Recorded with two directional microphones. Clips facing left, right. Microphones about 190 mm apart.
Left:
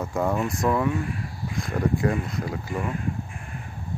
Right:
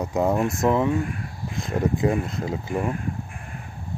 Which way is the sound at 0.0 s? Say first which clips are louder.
Right 3 dB; 20° right (ahead or behind).